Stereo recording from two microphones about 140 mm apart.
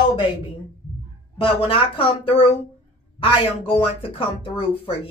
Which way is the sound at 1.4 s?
40° left (ahead or behind).